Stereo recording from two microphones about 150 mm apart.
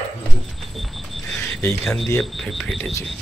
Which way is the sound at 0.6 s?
Centre (ahead or behind).